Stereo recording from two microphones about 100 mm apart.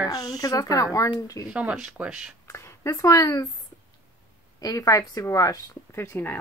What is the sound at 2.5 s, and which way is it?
Speech, 30° left (ahead or behind).